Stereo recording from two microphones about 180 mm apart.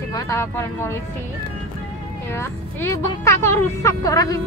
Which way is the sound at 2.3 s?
15° left (ahead or behind).